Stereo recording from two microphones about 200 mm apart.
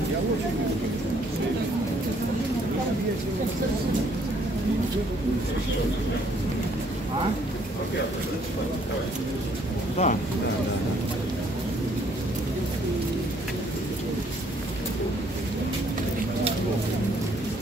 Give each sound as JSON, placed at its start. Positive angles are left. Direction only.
{"t": 10.0, "sound": "speech", "side_deg": 35}